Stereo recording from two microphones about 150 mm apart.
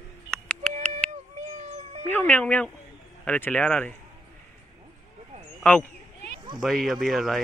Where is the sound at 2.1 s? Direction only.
10° left (ahead or behind).